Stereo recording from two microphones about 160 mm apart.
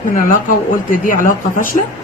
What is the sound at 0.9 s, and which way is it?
Speech, 60° left (ahead or behind).